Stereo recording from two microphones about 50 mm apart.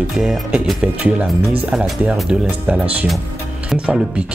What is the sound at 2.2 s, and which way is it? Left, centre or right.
Speech, right.